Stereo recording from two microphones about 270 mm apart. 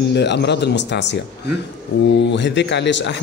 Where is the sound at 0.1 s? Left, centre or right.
Left.